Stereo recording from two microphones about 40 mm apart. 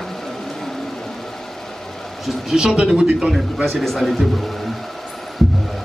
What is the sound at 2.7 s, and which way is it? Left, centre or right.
Speech, right.